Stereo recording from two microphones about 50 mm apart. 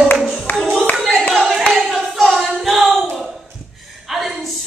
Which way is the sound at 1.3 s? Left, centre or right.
Centre.